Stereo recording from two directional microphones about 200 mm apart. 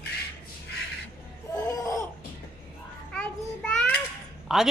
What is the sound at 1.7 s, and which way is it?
Laughter, 15° left (ahead or behind).